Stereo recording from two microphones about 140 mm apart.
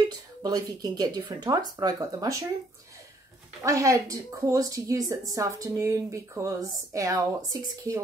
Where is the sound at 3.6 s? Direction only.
20° right (ahead or behind).